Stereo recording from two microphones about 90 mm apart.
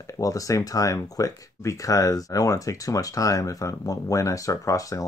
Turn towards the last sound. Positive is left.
turn(degrees=40)  # may be behind; listen again after turning